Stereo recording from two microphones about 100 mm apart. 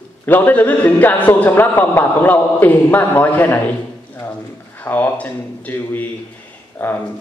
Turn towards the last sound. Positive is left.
turn(degrees=25)  # may be behind; listen again after turning